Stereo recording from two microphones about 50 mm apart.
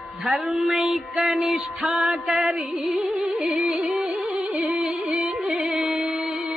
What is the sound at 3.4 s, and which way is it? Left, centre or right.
Music, centre.